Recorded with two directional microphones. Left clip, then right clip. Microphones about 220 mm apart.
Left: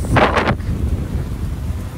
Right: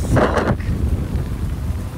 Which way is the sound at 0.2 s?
20° right (ahead or behind).